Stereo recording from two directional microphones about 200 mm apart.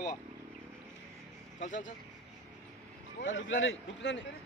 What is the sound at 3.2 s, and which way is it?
A man's voice, 70° left (ahead or behind).